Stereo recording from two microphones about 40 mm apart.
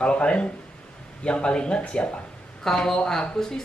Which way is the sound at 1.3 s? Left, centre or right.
Left.